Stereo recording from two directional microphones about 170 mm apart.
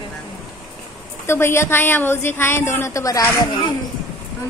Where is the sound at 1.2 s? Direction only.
15° left (ahead or behind).